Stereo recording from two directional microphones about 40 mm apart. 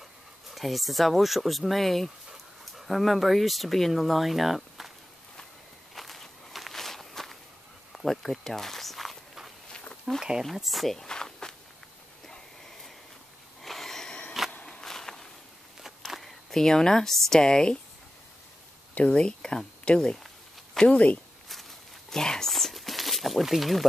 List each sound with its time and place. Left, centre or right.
0.5 s speech: centre
5.9 s walk: centre
10.1 s speech: centre
10.4 s speech: centre
11.1 s walk: centre
13.6 s a sound: centre
14.7 s walk: centre
16.1 s speech: centre
18.9 s speech: left
22.1 s speech: centre
22.5 s a sound: centre